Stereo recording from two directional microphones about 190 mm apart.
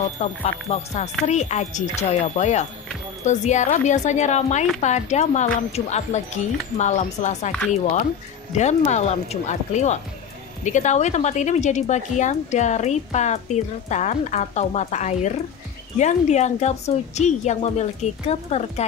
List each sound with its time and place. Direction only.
0.2 s speech: 35° left (ahead or behind)